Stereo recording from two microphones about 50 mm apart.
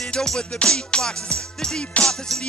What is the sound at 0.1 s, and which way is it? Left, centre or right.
Music, centre.